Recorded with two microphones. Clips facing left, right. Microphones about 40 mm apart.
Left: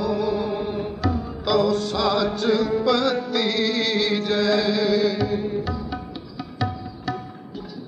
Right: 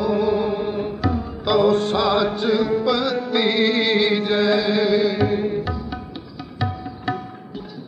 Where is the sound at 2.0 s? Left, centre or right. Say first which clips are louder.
Right 2 dB; centre.